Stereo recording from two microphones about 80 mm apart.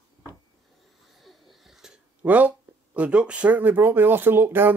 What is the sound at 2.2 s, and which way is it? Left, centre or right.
Speech, centre.